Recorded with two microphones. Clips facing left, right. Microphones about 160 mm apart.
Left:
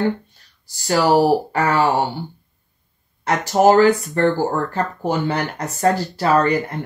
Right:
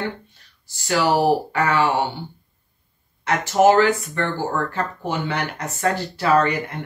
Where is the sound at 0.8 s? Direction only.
40° left (ahead or behind).